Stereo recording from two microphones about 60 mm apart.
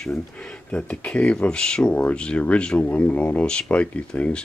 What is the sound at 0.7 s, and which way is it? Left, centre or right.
Speech, left.